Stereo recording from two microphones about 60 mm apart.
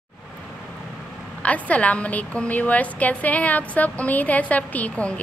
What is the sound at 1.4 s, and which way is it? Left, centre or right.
A woman's voice, left.